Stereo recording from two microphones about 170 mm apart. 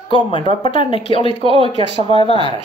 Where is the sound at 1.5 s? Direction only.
30° right (ahead or behind).